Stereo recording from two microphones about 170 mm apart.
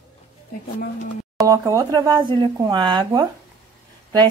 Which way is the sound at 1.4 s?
20° right (ahead or behind).